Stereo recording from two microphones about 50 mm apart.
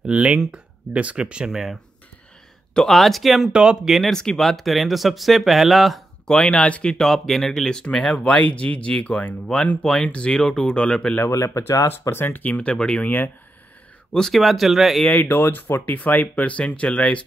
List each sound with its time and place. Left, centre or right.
0.0 s speech: right
1.5 s speech: centre
2.9 s speech: centre
4.1 s speech: centre
6.2 s speech: centre
7.0 s speech: centre
8.3 s speech: left
11.3 s speech: left
12.2 s speech: left
12.5 s speech: left
14.3 s speech: centre
15.2 s speech: left
15.8 s speech: left